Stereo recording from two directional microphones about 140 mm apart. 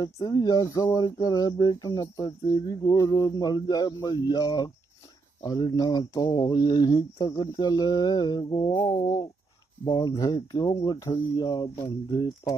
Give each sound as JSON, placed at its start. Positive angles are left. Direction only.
{"t": 0.0, "sound": "speech", "side_deg": 25}